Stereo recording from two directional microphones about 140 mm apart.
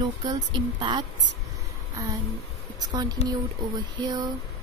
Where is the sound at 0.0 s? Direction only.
30° right (ahead or behind).